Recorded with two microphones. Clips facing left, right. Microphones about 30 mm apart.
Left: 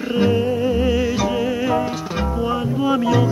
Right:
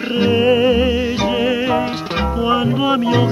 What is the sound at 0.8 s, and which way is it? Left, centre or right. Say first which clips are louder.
Music: right 2 dB; right.